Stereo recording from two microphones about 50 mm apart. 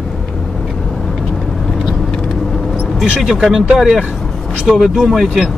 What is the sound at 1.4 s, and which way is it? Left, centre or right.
Vehicle, centre.